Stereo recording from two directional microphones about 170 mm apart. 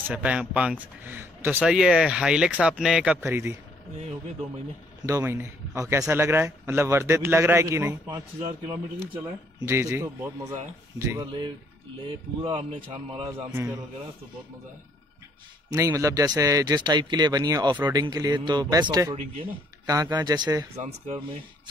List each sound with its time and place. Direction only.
0.1 s speech: 5° right (ahead or behind)
3.2 s speech: 15° right (ahead or behind)
5.0 s a man's voice: 15° right (ahead or behind); by 13.3 s 35° right (ahead or behind)
13.5 s speech: 15° right (ahead or behind)
15.7 s speech: 20° right (ahead or behind)